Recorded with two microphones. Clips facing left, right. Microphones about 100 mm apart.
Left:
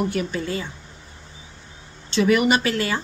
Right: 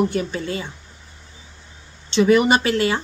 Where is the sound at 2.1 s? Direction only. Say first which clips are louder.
Right 3 dB; 30° right (ahead or behind).